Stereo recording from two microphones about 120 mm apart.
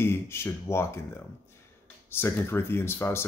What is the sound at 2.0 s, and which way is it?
Speech, 20° left (ahead or behind).